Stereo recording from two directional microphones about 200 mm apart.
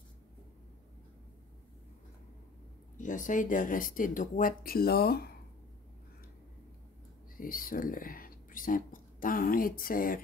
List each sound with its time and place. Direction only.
3.0 s speech: 40° left (ahead or behind)
7.3 s speech: 45° left (ahead or behind)